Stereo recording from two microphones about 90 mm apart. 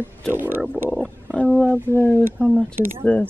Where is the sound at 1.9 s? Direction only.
25° left (ahead or behind).